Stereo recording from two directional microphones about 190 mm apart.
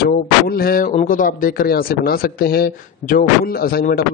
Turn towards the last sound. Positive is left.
turn(degrees=50)  # may be behind; listen again after turning